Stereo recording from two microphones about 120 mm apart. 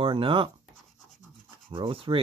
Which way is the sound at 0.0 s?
45° right (ahead or behind).